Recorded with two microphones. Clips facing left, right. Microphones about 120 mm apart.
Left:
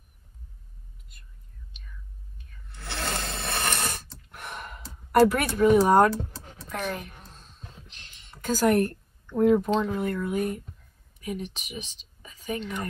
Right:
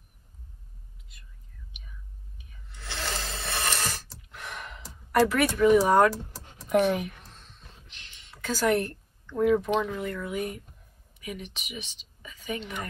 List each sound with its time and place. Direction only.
1.8 s whispering: 10° right (ahead or behind)
2.8 s rub: 60° left (ahead or behind)
4.3 s a sound: 55° left (ahead or behind)
5.1 s speech: 45° left (ahead or behind)
6.6 s speech: 10° right (ahead or behind)
7.1 s a sound: 40° left (ahead or behind)
9.8 s speech: 45° left (ahead or behind)